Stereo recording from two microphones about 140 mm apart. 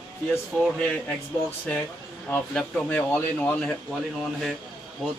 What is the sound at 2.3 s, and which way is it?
A man's voice, 10° left (ahead or behind).